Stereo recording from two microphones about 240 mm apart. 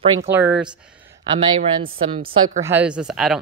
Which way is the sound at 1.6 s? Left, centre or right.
Right.